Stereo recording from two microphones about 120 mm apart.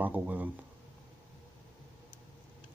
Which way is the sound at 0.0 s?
15° right (ahead or behind).